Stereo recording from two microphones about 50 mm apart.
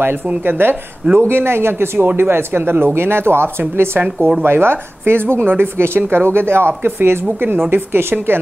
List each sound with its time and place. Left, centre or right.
0.4 s speech: right
1.3 s a woman's voice: right